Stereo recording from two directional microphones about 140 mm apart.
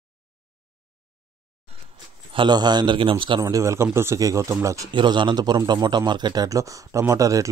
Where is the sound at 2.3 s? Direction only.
30° right (ahead or behind).